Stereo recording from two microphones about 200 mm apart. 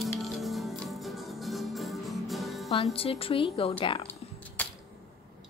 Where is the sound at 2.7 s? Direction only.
25° left (ahead or behind).